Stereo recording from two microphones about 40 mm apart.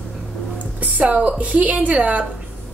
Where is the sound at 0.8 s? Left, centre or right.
Right.